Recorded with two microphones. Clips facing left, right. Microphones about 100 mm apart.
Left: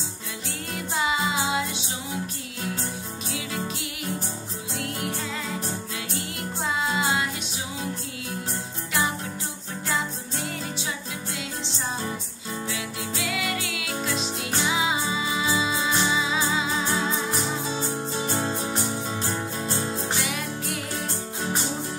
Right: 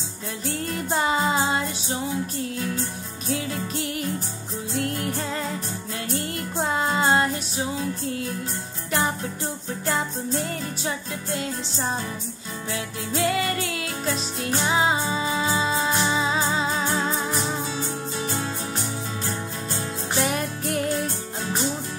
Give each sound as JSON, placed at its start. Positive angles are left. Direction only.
{"t": 0.7, "sound": "music", "side_deg": -45}
{"t": 4.7, "sound": "music", "side_deg": -45}
{"t": 6.1, "sound": "music", "side_deg": -45}
{"t": 9.8, "sound": "music", "side_deg": -45}
{"t": 18.1, "sound": "music", "side_deg": 30}
{"t": 20.2, "sound": "music", "side_deg": -45}